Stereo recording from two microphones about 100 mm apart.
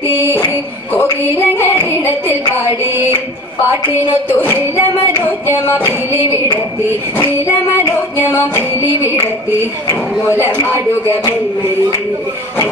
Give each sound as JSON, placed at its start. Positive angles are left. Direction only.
{"t": 0.2, "sound": "music", "side_deg": 25}
{"t": 2.9, "sound": "a sound", "side_deg": -20}
{"t": 4.1, "sound": "music", "side_deg": 20}
{"t": 8.3, "sound": "music", "side_deg": 25}